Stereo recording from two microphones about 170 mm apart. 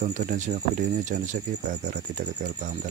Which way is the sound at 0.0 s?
45° right (ahead or behind).